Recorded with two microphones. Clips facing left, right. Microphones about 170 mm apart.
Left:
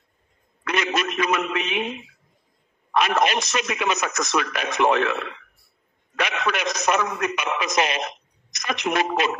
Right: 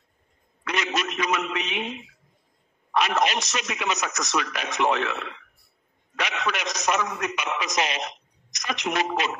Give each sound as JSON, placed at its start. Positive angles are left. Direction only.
{"t": 0.7, "sound": "a man's voice", "side_deg": 55}